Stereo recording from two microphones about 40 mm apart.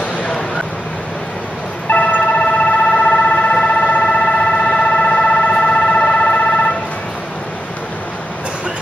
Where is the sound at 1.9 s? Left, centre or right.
Left.